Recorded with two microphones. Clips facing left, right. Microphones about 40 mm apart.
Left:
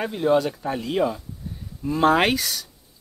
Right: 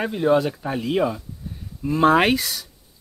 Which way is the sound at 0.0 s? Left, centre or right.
Centre.